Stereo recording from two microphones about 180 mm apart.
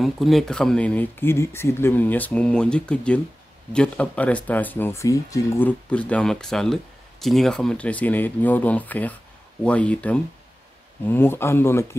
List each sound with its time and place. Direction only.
0.0 s speech: centre (ahead or behind)